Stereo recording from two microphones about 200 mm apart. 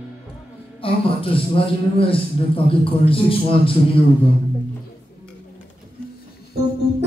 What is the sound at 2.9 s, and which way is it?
A man's voice, 25° left (ahead or behind).